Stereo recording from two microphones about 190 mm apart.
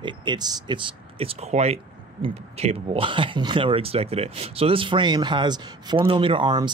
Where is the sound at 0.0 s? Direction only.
25° right (ahead or behind).